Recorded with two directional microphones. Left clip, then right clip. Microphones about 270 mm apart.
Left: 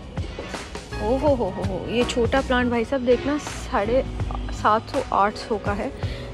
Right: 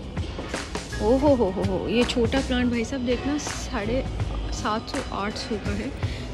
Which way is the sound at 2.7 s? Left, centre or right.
Left.